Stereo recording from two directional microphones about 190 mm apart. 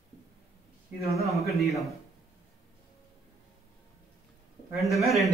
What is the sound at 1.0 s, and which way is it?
Speech, 15° right (ahead or behind).